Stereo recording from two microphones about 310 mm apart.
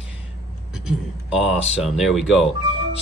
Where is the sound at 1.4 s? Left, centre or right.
Centre.